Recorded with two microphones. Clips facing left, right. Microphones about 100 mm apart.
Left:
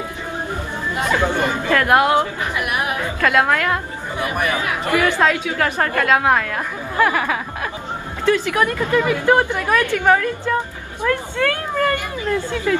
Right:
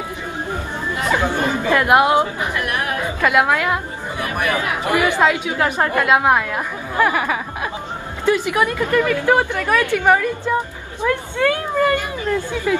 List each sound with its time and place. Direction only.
1.7 s a woman's voice: 15° right (ahead or behind)
2.5 s chatter: 15° left (ahead or behind)
3.0 s a woman's voice: 15° right (ahead or behind)
4.2 s speech: 20° left (ahead or behind)
4.6 s a woman's voice: 15° right (ahead or behind)
8.9 s speech: 15° left (ahead or behind)
9.2 s a woman's voice: 15° right (ahead or behind)